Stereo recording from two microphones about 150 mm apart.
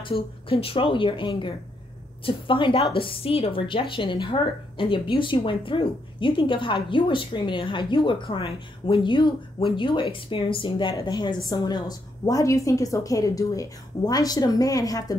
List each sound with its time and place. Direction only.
0.0 s a woman's voice: 40° left (ahead or behind)